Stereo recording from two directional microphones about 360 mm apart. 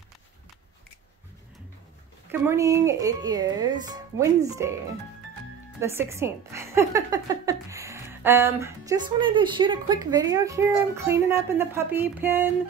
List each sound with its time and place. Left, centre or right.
2.4 s a woman's voice: centre
5.8 s a woman's voice: centre